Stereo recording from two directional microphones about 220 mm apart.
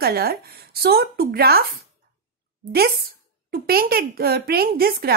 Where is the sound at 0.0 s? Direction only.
45° right (ahead or behind).